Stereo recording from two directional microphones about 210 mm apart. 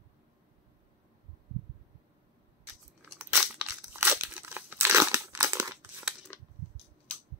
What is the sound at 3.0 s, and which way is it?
Crumpling, 5° right (ahead or behind).